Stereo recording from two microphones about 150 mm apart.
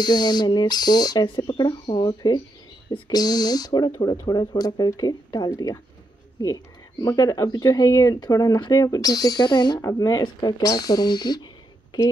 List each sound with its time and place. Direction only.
0.0 s speech: 30° left (ahead or behind)
6.5 s speech: 25° left (ahead or behind)